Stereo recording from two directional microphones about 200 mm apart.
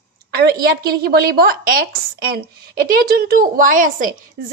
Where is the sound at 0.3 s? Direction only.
50° right (ahead or behind).